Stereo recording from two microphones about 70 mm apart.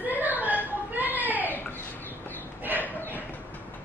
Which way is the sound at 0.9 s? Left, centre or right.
Right.